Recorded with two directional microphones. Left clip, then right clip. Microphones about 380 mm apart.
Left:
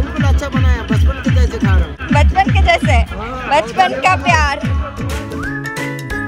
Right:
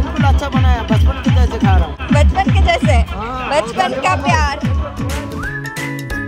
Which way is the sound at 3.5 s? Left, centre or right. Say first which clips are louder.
Left 3 dB; centre.